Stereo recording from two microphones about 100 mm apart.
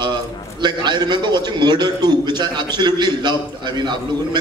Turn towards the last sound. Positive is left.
turn(degrees=-45)  # may be behind; listen again after turning